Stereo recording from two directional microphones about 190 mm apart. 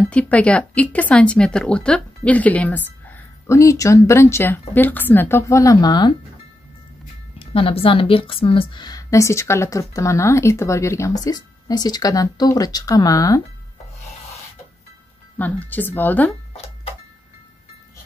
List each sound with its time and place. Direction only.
0.1 s speech: 5° left (ahead or behind); by 6.1 s 20° left (ahead or behind)
7.3 s a woman's voice: 30° left (ahead or behind)
15.3 s speech: 10° left (ahead or behind)